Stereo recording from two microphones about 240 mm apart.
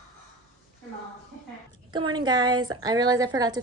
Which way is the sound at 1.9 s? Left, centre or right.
Centre.